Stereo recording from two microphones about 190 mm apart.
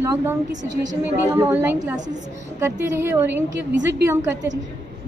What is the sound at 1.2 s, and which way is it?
Speech, 10° right (ahead or behind).